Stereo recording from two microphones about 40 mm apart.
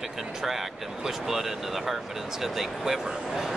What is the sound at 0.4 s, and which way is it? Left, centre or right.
Speech, centre.